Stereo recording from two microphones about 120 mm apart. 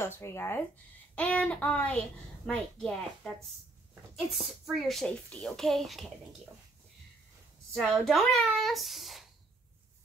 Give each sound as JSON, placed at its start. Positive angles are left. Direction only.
{"t": 0.0, "sound": "speech", "side_deg": 20}
{"t": 1.1, "sound": "a child's voice", "side_deg": 10}
{"t": 7.7, "sound": "a child's voice", "side_deg": 0}